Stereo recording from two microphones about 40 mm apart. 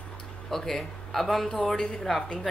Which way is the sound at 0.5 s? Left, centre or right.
Centre.